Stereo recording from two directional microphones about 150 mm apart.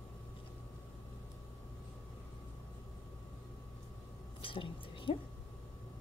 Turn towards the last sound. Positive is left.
turn(degrees=35)  # may be behind; listen again after turning